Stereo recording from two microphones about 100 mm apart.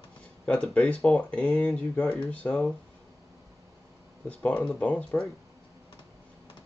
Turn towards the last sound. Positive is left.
turn(degrees=15)  # may be behind; listen again after turning